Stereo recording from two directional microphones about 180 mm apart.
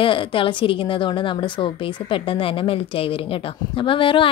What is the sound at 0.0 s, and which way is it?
A woman's voice, 30° left (ahead or behind).